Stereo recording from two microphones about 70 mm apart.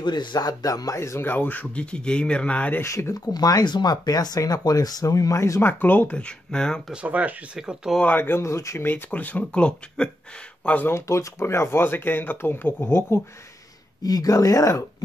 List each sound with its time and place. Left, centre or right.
0.0 s speech: left
1.2 s speech: left
2.8 s speech: left
3.3 s speech: left
5.6 s speech: left; by 6.8 s centre
6.9 s speech: centre
7.5 s speech: centre
8.0 s speech: left
8.4 s speech: left
8.8 s speech: left
10.9 s speech: left
14.0 s speech: left